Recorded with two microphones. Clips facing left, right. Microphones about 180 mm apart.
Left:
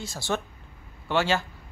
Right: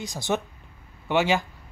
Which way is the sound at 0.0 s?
20° right (ahead or behind).